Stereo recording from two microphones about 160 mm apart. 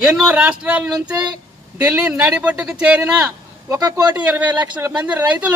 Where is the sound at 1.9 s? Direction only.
5° right (ahead or behind).